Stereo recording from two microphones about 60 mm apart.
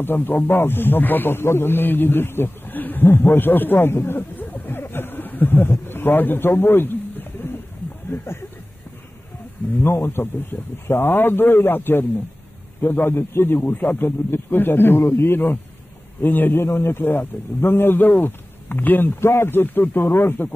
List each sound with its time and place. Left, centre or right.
0.0 s speech: left
4.6 s snicker: left
5.9 s bird: left
8.1 s speech: left
9.8 s speech: left
13.0 s speech: left
13.6 s speech: left